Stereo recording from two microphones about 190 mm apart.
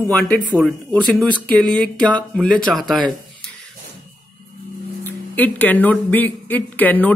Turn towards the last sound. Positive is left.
turn(degrees=10)  # may be behind; listen again after turning